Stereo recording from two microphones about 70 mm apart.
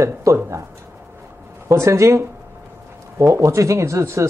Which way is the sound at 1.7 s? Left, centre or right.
Right.